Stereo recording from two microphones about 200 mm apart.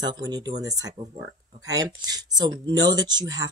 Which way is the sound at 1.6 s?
15° right (ahead or behind).